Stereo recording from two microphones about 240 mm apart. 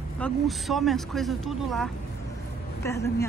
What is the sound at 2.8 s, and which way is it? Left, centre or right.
Speech, centre.